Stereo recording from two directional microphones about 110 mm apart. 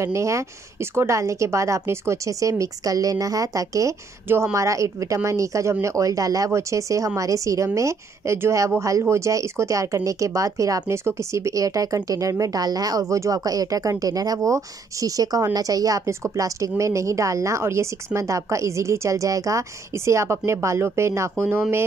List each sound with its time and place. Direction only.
0.0 s a woman's voice: 25° right (ahead or behind)